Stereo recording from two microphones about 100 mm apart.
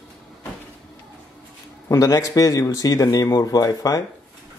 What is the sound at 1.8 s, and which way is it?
A man's voice, 30° left (ahead or behind).